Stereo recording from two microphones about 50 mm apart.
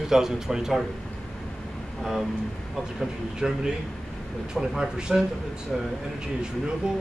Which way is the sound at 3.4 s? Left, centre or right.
Centre.